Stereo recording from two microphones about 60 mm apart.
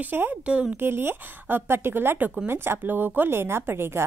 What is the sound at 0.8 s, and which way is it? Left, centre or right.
A woman's voice, right.